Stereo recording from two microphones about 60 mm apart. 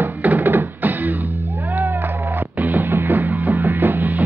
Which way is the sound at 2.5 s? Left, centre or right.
Right.